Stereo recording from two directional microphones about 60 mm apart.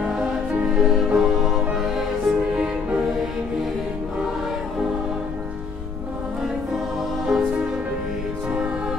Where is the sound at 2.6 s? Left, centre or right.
Centre.